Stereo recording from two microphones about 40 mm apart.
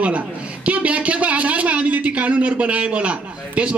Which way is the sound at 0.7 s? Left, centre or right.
Right.